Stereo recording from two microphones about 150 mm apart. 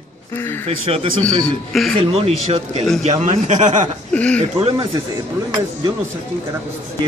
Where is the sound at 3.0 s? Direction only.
55° right (ahead or behind).